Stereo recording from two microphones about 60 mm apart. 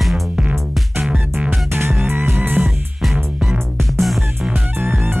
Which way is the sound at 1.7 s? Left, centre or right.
Right.